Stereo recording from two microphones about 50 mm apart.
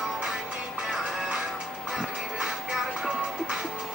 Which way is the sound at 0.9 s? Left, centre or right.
Centre.